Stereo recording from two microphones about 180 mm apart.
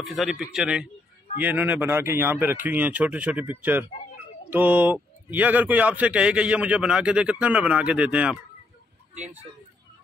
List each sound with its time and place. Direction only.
0.0 s a man's voice: centre (ahead or behind)
9.1 s speech: 40° right (ahead or behind)